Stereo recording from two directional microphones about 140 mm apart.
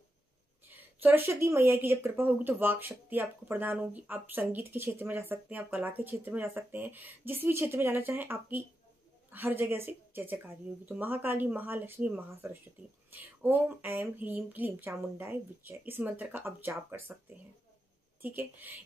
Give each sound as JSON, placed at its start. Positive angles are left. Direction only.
{"t": 0.7, "sound": "speech", "side_deg": -15}
{"t": 18.2, "sound": "speech", "side_deg": -15}